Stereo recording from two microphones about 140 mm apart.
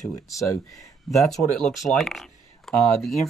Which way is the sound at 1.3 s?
5° left (ahead or behind).